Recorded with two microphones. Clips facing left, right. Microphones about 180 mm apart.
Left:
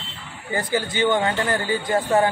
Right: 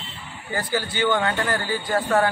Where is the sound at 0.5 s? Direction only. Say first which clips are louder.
Left 2 dB; 20° left (ahead or behind).